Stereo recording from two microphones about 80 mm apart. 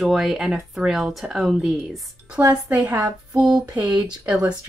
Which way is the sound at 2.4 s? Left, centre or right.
Right.